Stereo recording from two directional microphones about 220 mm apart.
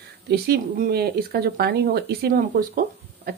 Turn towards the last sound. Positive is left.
turn(degrees=-40)  # may be behind; listen again after turning